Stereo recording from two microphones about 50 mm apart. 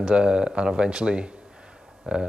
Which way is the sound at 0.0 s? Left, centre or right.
Centre.